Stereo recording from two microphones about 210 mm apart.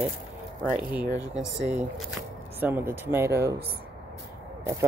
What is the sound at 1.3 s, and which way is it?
Speech, centre (ahead or behind).